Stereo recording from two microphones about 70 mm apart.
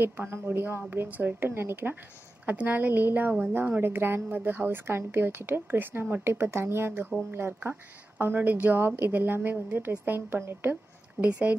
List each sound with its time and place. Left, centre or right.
0.0 s a woman's voice: right
2.4 s a woman's voice: right
11.2 s a woman's voice: centre